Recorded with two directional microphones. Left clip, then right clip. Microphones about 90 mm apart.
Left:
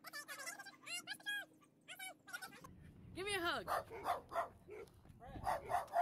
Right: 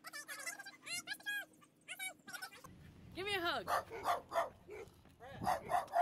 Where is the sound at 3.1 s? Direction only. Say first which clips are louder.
Right 2 dB; 20° left (ahead or behind).